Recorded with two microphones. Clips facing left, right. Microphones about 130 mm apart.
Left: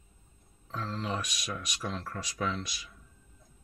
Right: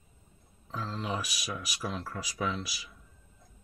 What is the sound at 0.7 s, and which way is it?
Speech, 5° right (ahead or behind).